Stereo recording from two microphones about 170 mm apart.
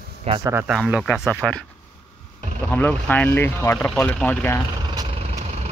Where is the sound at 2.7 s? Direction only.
10° left (ahead or behind).